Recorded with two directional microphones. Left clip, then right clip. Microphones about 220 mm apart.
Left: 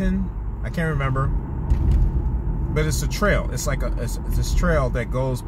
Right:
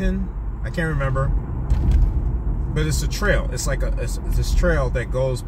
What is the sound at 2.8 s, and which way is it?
Speech, 15° left (ahead or behind).